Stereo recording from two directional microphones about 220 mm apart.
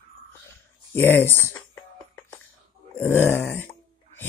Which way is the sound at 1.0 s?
10° left (ahead or behind).